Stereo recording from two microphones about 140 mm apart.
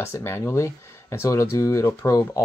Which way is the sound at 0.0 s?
15° left (ahead or behind).